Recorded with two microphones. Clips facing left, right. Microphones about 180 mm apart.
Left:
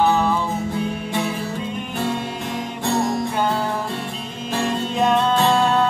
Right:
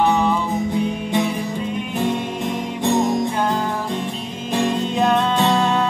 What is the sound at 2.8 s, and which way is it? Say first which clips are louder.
Music: right 3 dB; 15° right (ahead or behind).